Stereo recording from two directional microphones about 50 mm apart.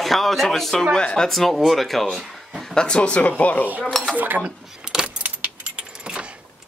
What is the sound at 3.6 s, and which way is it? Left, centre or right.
Cutlery, right.